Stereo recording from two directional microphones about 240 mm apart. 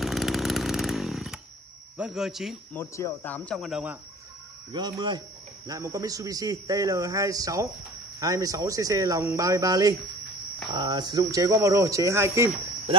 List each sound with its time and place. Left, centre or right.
0.0 s chainsaw: centre
2.0 s speech: centre
2.8 s speech: centre
4.7 s speech: centre